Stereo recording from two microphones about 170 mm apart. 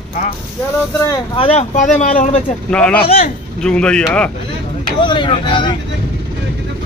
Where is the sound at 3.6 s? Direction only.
5° left (ahead or behind).